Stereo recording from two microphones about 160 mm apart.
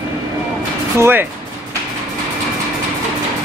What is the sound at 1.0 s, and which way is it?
Speech, 15° right (ahead or behind).